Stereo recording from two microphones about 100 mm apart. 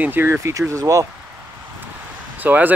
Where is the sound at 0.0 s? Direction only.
20° right (ahead or behind).